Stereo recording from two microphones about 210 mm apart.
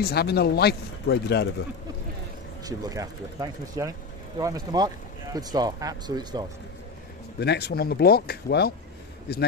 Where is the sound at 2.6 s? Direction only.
15° right (ahead or behind).